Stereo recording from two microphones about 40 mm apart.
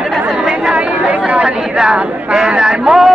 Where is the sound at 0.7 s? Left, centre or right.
Right.